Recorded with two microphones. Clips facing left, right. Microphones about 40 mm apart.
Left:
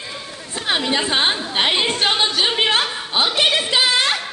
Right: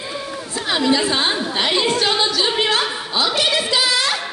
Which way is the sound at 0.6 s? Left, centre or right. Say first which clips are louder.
Right 2 dB; left.